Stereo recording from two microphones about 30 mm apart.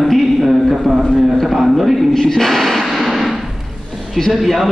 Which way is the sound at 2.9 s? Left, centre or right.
Centre.